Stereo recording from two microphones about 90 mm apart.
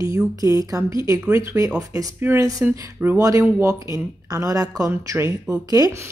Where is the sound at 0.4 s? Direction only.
40° right (ahead or behind); by 2.4 s 25° right (ahead or behind).